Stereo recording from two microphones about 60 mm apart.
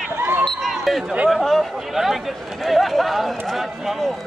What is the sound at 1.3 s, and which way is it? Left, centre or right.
Speech, centre.